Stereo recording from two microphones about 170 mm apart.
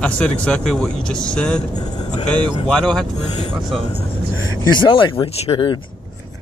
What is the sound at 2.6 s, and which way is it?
Speech, centre (ahead or behind).